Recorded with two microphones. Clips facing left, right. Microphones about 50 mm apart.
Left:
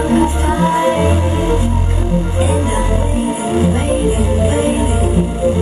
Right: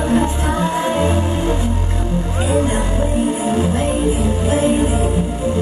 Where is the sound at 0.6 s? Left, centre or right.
Left; by 5.0 s centre.